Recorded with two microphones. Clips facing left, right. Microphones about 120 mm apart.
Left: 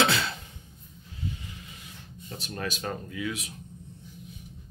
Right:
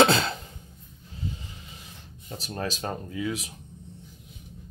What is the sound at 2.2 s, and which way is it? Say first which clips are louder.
Speech: right 2 dB; 30° right (ahead or behind).